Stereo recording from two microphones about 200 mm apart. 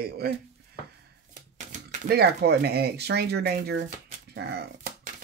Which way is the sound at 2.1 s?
55° right (ahead or behind).